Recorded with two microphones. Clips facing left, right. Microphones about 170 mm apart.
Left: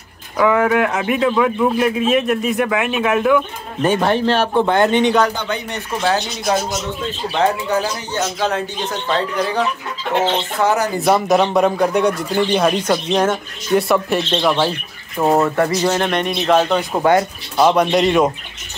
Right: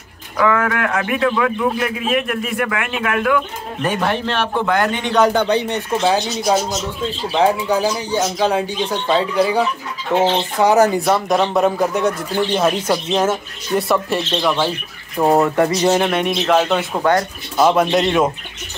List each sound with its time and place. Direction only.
0.4 s a man's voice: 20° left (ahead or behind)
6.1 s a man's voice: centre (ahead or behind)
11.2 s a man's voice: centre (ahead or behind)
15.1 s speech: 15° right (ahead or behind)
16.0 s a man's voice: 5° right (ahead or behind)
16.9 s speech: 10° left (ahead or behind)
17.6 s a man's voice: centre (ahead or behind)